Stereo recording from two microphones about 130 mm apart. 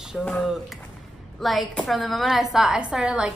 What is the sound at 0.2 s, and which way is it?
A woman's voice, centre (ahead or behind).